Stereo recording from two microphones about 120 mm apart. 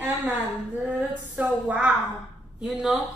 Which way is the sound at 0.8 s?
10° right (ahead or behind).